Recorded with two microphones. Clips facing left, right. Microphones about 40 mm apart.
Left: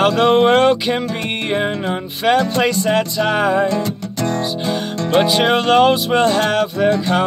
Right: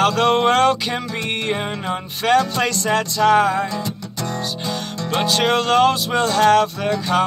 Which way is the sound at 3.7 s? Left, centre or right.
Left.